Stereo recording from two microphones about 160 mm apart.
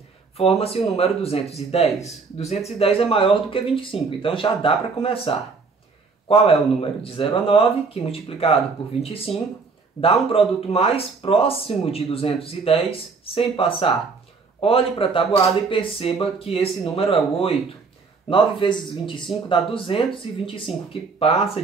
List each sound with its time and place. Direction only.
0.4 s speech: 40° left (ahead or behind)
10.3 s speech: 40° left (ahead or behind)